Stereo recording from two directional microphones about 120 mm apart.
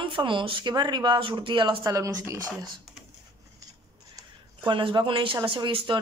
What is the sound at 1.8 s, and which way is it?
Speech, 25° right (ahead or behind).